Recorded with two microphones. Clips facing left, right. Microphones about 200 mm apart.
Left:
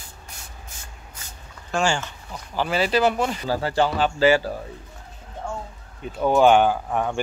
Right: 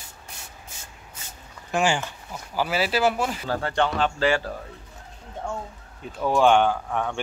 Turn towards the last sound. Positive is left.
turn(degrees=5)  # may be behind; listen again after turning